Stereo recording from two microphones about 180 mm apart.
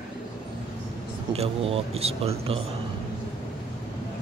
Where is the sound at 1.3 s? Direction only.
35° right (ahead or behind).